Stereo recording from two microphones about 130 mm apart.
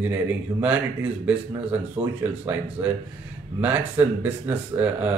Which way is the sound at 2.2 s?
15° right (ahead or behind).